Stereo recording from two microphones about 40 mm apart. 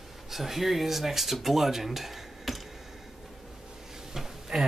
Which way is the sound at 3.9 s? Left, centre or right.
Centre.